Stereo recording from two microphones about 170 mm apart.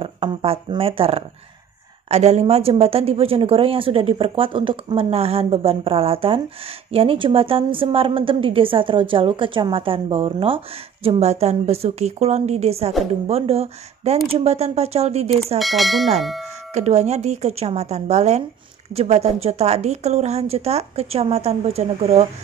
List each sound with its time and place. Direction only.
0.0 s a woman's voice: 30° right (ahead or behind)
15.6 s speech: centre (ahead or behind)
16.7 s a woman's voice: 40° right (ahead or behind)